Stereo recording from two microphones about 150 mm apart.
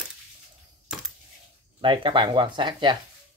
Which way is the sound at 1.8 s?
30° right (ahead or behind).